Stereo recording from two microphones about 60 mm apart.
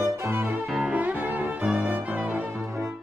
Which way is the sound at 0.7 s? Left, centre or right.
Centre.